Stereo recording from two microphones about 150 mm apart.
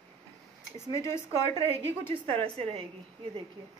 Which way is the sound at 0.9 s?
20° left (ahead or behind).